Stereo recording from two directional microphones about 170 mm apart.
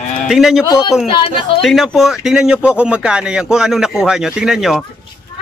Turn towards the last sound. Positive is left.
turn(degrees=0)  # may be behind; listen again after turning